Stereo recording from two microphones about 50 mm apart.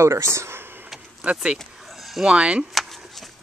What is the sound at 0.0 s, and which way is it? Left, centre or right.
Speech, right.